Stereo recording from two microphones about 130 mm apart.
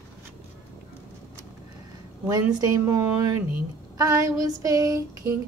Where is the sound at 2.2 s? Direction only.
25° right (ahead or behind).